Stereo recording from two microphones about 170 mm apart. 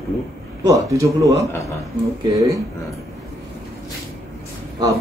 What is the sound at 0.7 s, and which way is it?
A man's voice, 20° right (ahead or behind).